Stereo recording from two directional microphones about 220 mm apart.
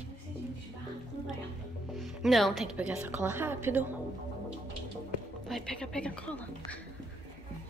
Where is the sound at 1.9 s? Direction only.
Centre (ahead or behind).